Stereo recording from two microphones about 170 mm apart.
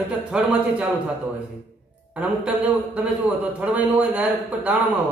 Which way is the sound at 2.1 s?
5° right (ahead or behind).